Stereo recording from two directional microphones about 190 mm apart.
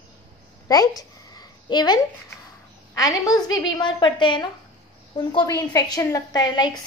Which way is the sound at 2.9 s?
20° left (ahead or behind).